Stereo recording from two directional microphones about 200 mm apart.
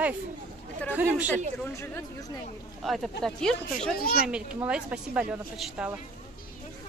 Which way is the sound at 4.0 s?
45° left (ahead or behind).